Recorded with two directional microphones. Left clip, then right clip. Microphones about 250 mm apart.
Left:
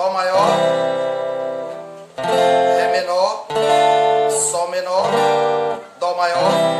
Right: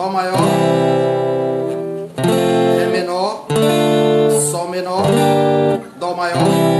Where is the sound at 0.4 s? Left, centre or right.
Right.